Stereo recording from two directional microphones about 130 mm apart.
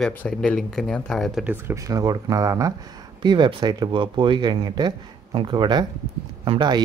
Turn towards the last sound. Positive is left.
turn(degrees=-35)  # may be behind; listen again after turning